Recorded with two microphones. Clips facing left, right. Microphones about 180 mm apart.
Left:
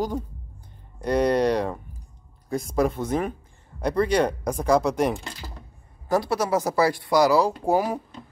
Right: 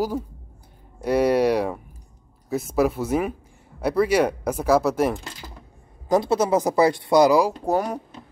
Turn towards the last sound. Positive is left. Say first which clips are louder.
# left 1 dB
turn(degrees=5)  # may be behind; listen again after turning